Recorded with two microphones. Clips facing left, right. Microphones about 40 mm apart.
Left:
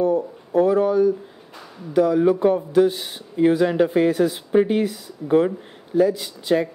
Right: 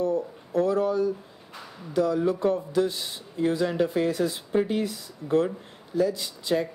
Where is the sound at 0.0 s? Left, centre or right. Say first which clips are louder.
Left 6 dB; left.